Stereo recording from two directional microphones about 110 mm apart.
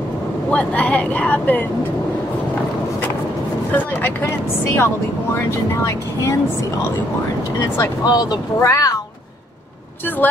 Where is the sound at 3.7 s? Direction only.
20° left (ahead or behind).